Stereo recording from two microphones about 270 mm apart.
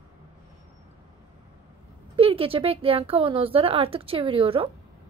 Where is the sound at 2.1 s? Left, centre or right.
Right.